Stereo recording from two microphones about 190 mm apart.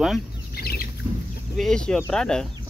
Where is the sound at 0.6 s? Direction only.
55° left (ahead or behind).